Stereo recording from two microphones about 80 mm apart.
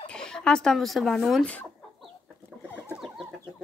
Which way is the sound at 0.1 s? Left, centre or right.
Centre.